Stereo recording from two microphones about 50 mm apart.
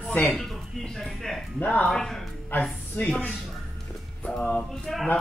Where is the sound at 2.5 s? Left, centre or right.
Left.